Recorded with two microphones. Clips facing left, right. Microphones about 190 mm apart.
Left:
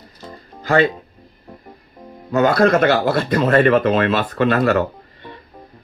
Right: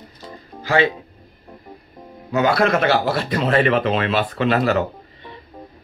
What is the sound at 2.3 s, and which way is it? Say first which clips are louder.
Speech: left 3 dB; 45° left (ahead or behind).